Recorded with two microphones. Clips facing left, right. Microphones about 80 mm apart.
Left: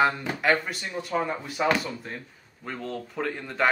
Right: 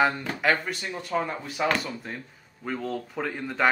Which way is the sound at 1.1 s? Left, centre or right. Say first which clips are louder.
Left 1 dB; centre.